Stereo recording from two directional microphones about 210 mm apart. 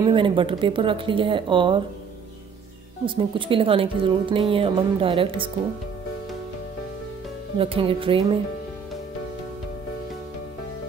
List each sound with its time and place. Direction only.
0.0 s a woman's voice: 25° right (ahead or behind)
3.2 s a woman's voice: 25° right (ahead or behind)
7.5 s a woman's voice: 25° right (ahead or behind)